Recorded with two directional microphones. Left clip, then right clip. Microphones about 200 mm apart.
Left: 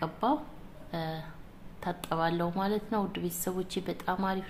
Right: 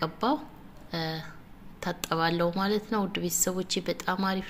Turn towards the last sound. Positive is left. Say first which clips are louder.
# right 2 dB
turn(degrees=-10)  # may be behind; listen again after turning